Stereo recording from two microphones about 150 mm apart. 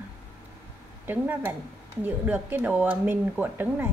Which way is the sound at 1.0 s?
10° right (ahead or behind).